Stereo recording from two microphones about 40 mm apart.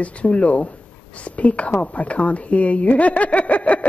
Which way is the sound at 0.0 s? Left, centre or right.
Left.